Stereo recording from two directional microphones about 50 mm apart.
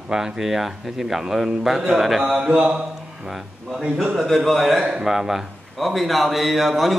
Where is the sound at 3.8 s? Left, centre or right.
Centre.